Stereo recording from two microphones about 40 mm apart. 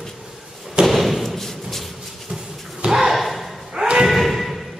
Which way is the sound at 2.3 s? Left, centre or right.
Centre.